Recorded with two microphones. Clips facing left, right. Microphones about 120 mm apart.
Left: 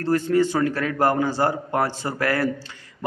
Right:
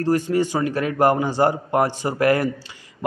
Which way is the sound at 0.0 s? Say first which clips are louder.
Even; 15° right (ahead or behind).